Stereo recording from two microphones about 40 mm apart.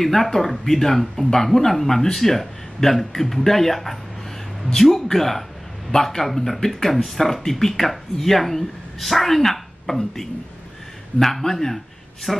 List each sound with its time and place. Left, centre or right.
0.0 s speech: centre